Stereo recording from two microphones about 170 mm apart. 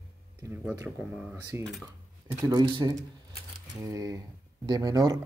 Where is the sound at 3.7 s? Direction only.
20° right (ahead or behind).